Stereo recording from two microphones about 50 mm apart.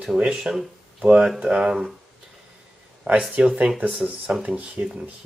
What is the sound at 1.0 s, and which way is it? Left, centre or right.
Speech, centre.